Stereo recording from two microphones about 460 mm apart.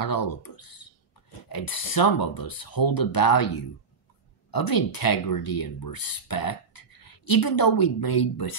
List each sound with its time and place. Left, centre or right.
0.0 s speech: left